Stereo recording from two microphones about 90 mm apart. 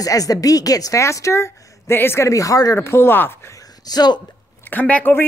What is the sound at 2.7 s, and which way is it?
Speech, 30° left (ahead or behind).